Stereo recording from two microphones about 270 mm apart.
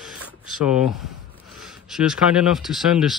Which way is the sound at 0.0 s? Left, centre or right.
Centre.